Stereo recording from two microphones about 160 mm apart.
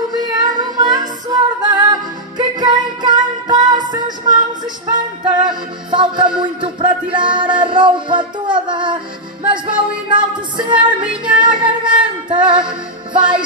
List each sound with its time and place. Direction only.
0.1 s music: 25° right (ahead or behind)
10.0 s music: 30° right (ahead or behind)